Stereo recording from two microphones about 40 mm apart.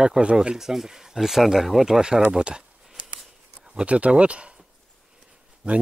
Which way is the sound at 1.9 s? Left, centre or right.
Centre.